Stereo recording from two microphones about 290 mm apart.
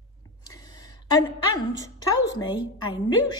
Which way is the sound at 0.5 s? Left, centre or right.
Centre.